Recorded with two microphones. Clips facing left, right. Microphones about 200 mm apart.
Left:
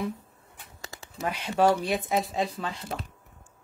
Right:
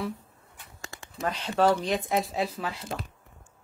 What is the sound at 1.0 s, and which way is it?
A woman's voice, 10° left (ahead or behind).